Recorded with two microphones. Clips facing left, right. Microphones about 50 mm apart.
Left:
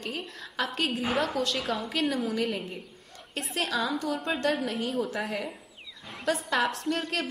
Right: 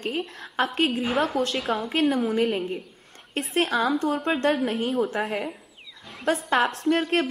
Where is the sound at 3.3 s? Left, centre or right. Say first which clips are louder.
Right 6 dB; right.